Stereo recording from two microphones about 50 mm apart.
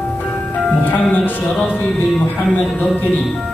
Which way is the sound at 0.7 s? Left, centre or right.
Left.